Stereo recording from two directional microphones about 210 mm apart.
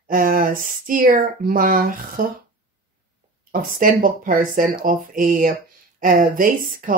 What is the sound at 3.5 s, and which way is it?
Speech, 40° right (ahead or behind).